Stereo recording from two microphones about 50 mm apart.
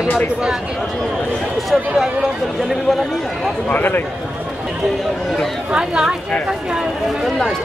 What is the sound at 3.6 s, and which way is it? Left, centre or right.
Speech, left.